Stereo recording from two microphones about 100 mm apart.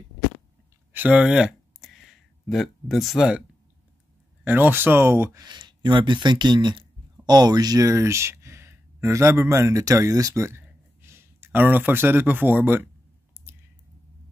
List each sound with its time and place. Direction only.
0.9 s a sound: 15° right (ahead or behind)
2.4 s speech: centre (ahead or behind)
4.5 s speech: 20° right (ahead or behind)
5.4 s speech: 45° right (ahead or behind)
7.9 s speech: 30° right (ahead or behind)